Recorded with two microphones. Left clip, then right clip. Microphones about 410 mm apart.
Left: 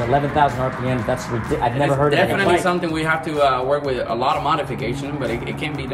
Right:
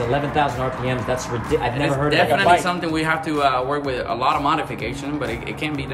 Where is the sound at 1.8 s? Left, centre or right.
Centre.